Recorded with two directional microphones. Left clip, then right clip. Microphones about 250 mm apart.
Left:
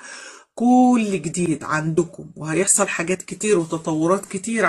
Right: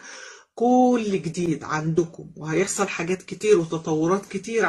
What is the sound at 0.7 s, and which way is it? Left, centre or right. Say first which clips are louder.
Speech: left 3 dB; left.